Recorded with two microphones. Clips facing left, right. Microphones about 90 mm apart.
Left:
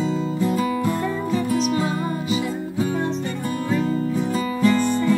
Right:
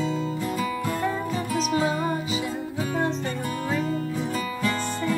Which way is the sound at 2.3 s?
40° left (ahead or behind).